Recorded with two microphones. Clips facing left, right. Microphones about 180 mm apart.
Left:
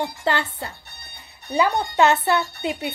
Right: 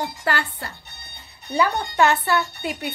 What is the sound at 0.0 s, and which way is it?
A woman's voice, 20° left (ahead or behind).